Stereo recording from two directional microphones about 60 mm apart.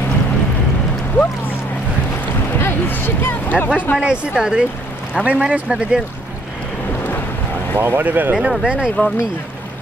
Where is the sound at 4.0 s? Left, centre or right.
Centre.